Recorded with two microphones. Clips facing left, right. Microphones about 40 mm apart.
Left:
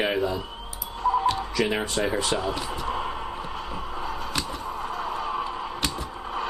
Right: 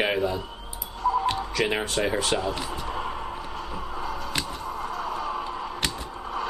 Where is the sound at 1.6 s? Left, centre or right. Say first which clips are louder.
Even; centre.